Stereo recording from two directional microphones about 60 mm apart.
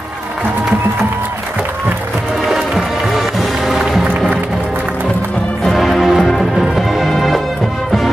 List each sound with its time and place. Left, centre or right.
2.4 s music: centre
5.6 s music: centre